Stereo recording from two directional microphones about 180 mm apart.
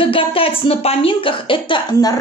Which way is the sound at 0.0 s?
30° left (ahead or behind).